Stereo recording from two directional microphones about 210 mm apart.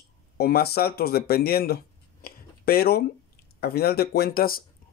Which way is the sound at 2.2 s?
45° left (ahead or behind).